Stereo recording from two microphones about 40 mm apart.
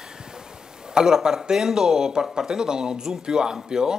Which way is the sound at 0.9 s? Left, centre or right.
Centre.